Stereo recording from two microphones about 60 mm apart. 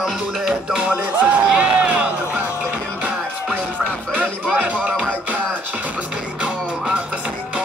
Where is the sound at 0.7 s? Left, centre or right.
Right.